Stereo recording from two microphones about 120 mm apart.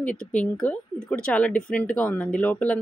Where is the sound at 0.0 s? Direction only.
10° left (ahead or behind).